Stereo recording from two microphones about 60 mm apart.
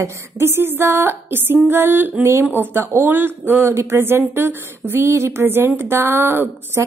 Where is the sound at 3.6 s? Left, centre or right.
Right.